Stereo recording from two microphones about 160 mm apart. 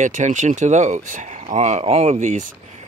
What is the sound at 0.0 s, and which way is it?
Speech, 50° right (ahead or behind).